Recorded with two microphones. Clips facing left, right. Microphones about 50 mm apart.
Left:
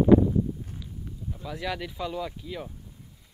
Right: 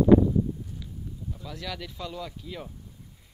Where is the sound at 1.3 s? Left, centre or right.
Centre.